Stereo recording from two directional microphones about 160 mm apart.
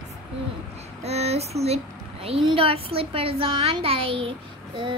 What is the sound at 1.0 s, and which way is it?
A woman's voice, 40° right (ahead or behind).